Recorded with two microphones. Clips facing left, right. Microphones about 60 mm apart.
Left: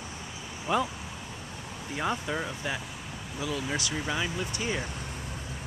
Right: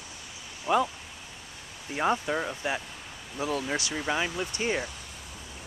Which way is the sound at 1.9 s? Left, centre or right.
Centre.